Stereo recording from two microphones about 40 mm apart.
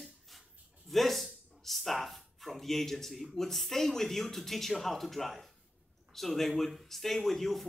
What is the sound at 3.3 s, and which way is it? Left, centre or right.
A man's voice, centre.